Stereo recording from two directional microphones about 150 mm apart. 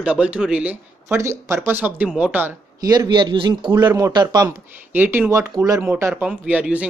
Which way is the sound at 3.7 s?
20° right (ahead or behind).